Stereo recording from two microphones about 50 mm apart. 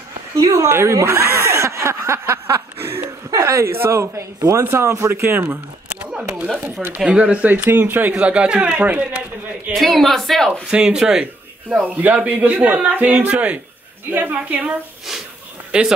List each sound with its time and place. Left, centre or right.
0.4 s a man's voice: right
6.1 s speech: right
7.4 s speech: right
8.2 s speech: right
9.8 s speech: centre
10.5 s speech: right
11.8 s speech: right